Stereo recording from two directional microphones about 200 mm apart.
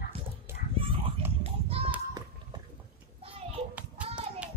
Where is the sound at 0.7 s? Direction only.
25° right (ahead or behind).